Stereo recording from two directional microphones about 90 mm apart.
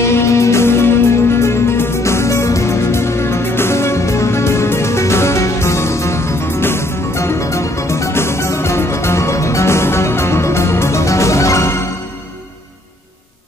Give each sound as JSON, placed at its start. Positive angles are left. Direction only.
{"t": 0.0, "sound": "music", "side_deg": 30}